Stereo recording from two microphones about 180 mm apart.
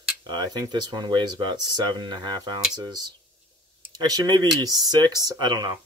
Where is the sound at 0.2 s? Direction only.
25° right (ahead or behind).